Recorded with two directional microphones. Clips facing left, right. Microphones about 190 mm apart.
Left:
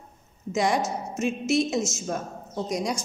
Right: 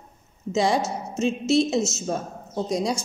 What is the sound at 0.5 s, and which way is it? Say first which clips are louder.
A woman's voice: right 2 dB; 25° right (ahead or behind).